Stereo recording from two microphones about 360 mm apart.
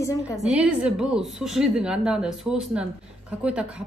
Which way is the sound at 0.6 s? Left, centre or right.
Centre.